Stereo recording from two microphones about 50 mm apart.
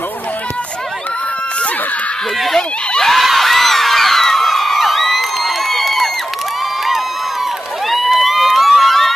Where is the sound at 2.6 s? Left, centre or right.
Centre.